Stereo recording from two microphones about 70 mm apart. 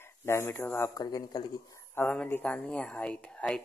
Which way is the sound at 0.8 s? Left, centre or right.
Left.